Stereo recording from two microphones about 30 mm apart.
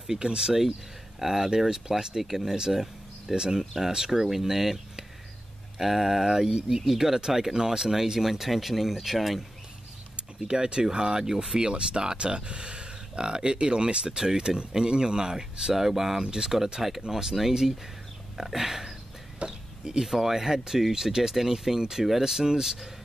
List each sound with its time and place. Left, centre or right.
0.2 s speech: right
1.2 s speech: centre
2.7 s a sound: centre
3.3 s speech: right; by 9.4 s centre
10.5 s speech: right
15.7 s speech: centre
16.2 s speech: right
16.5 s speech: centre
18.4 s a sound: centre
19.4 s a sound: right
20.1 s speech: centre